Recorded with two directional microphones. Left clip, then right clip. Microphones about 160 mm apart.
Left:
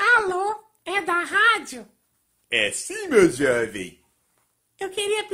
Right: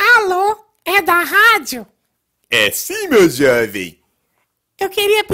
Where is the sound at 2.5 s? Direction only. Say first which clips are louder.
Right 9 dB; 50° right (ahead or behind).